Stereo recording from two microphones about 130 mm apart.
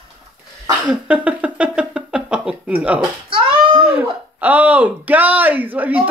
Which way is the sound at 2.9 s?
40° right (ahead or behind).